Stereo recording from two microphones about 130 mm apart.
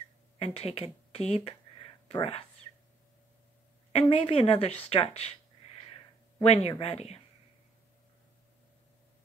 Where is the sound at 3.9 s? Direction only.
55° left (ahead or behind).